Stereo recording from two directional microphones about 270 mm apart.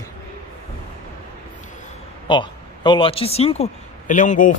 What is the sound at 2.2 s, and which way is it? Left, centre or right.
Speech, centre.